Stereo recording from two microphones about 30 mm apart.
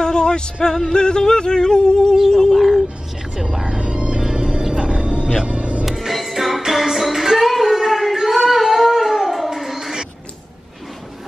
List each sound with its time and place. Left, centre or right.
0.0 s music: left
0.9 s yodeling: left
2.3 s a sound: centre
3.7 s music: right
5.9 s music: centre
8.3 s cat: centre